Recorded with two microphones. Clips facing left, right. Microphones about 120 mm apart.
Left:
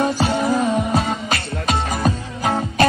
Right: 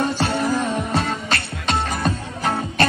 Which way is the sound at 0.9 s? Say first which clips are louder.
Left 2 dB; 5° left (ahead or behind).